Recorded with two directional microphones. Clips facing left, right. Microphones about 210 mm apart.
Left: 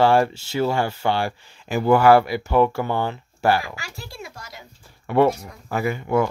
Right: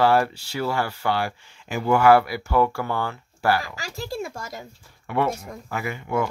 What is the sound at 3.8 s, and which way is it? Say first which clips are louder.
Speech: right 7 dB; 45° right (ahead or behind).